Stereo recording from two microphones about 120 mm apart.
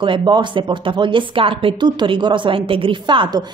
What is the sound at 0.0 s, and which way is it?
A woman's voice, 40° right (ahead or behind).